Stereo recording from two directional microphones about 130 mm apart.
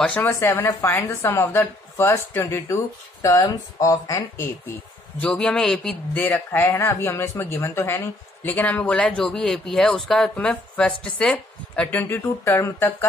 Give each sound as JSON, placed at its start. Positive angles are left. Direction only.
{"t": 0.0, "sound": "speech", "side_deg": 5}
{"t": 0.3, "sound": "speech", "side_deg": 20}
{"t": 5.2, "sound": "a man's voice", "side_deg": 5}
{"t": 6.1, "sound": "speech", "side_deg": 15}